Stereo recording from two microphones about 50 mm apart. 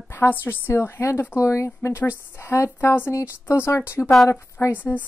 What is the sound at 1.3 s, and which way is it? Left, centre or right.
Speech, left.